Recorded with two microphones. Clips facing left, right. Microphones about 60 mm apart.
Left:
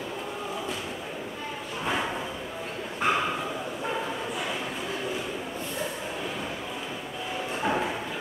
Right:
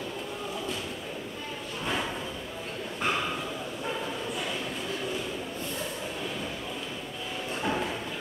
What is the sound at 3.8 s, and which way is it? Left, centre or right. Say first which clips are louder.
Bow-wow: left 2 dB; centre.